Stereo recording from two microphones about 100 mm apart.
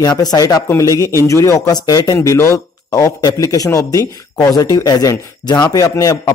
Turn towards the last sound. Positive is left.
turn(degrees=35)  # may be behind; listen again after turning